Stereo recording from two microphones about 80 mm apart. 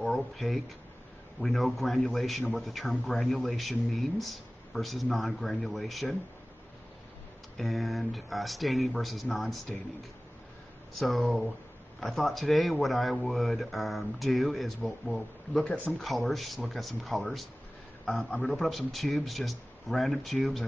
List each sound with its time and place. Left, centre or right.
0.0 s a sound: centre
1.4 s speech: centre
7.5 s speech: centre
11.0 s speech: centre
15.6 s speech: centre
16.0 s speech: centre